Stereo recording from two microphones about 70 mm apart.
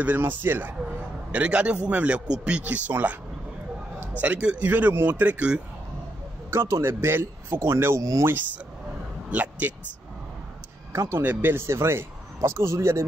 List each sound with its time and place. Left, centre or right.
0.0 s speech: right
1.3 s speech: centre
4.2 s speech: centre
6.5 s speech: right
8.0 s speech: right
9.3 s speech: right
10.9 s speech: right